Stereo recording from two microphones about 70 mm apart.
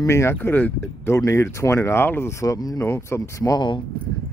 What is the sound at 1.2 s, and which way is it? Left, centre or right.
Speech, left.